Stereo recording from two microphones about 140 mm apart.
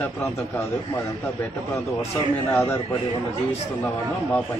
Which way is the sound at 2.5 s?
20° left (ahead or behind).